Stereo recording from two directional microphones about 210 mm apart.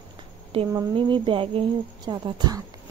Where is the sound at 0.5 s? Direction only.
25° right (ahead or behind).